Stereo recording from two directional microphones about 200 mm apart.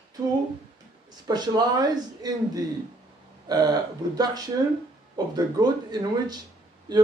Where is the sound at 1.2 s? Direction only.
20° right (ahead or behind).